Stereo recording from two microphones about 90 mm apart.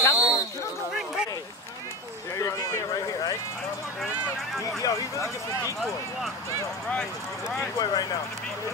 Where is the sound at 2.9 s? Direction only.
40° left (ahead or behind).